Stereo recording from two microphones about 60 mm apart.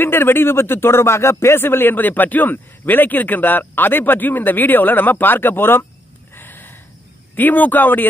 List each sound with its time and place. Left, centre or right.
0.0 s speech: left
6.3 s a sound: left
7.3 s speech: left